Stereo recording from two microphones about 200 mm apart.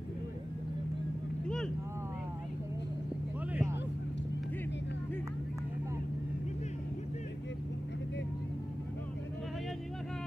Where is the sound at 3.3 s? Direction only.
5° right (ahead or behind).